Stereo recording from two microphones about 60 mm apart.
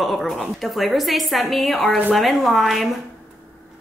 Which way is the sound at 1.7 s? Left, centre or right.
Left.